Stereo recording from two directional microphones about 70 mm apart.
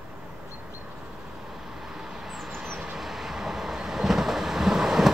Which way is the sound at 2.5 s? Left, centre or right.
Right.